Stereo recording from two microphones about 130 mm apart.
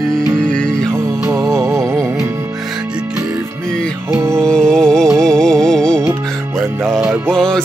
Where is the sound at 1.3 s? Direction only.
20° right (ahead or behind).